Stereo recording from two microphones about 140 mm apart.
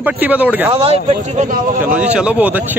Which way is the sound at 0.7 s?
45° right (ahead or behind).